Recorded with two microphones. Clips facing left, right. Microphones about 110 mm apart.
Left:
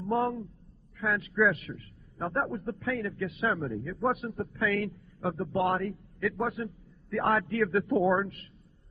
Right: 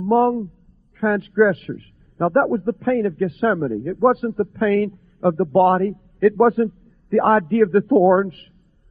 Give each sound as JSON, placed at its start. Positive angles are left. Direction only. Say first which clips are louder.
{"t": 0.0, "sound": "a man's voice", "louder": "right 12 dB", "side_deg": -45}
{"t": 1.3, "sound": "a man's voice", "louder": "right 10 dB", "side_deg": -40}
{"t": 7.6, "sound": "a man's voice", "louder": "right 12 dB", "side_deg": -35}